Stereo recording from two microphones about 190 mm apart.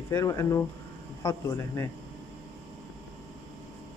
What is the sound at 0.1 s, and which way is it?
Speech, 15° left (ahead or behind).